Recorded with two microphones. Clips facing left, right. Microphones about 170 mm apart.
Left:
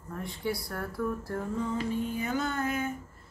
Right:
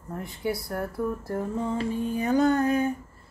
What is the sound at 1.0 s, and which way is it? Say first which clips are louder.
Music: right 1 dB; 20° right (ahead or behind).